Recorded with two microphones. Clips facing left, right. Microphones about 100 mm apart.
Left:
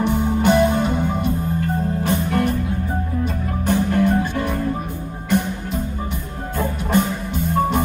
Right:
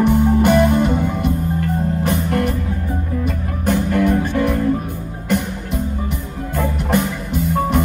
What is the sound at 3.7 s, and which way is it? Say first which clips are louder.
Music: right 1 dB; 60° right (ahead or behind).